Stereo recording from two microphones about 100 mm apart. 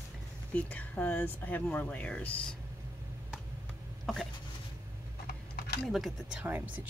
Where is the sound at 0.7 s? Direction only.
15° left (ahead or behind).